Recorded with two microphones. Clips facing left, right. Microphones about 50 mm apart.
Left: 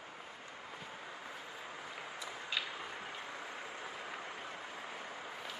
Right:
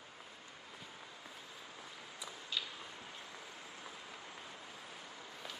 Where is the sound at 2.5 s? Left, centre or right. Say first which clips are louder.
Left 3 dB; left.